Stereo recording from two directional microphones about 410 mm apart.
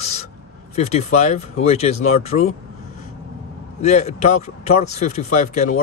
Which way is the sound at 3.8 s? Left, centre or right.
Centre.